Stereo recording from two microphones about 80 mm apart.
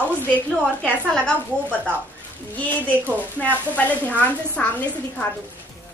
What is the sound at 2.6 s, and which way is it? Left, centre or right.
A woman's voice, centre.